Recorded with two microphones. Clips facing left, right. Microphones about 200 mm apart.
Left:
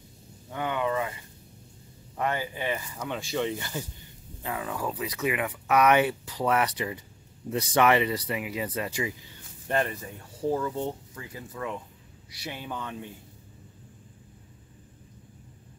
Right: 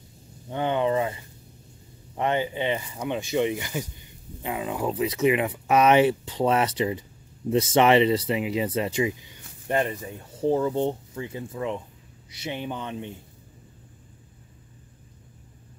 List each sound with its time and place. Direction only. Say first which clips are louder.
0.5 s speech: right 5 dB; 25° right (ahead or behind)
2.1 s speech: right 5 dB; 25° right (ahead or behind)